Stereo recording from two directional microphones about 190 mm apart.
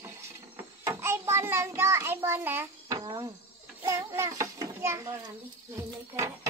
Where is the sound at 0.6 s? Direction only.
15° right (ahead or behind).